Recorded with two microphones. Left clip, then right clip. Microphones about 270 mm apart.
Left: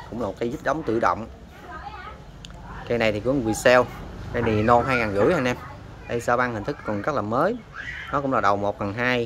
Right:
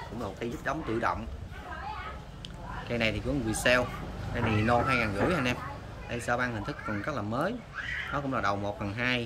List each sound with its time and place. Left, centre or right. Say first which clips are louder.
0.2 s speech: left 9 dB; left
2.9 s speech: left 9 dB; centre